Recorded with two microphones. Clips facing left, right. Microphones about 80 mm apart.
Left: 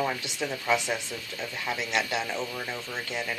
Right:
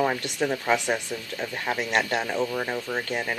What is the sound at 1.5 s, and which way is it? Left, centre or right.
Speech, right.